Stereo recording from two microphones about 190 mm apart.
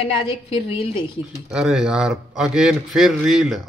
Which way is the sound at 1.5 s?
5° right (ahead or behind).